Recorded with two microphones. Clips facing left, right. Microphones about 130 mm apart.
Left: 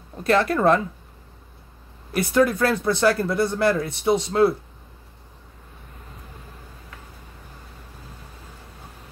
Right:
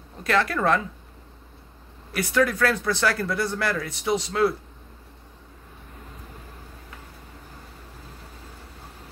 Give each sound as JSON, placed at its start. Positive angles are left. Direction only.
{"t": 0.2, "sound": "speech", "side_deg": 30}
{"t": 2.1, "sound": "speech", "side_deg": 25}